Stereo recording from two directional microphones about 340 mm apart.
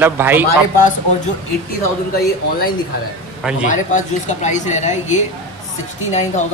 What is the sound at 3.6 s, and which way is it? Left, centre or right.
Speech, left.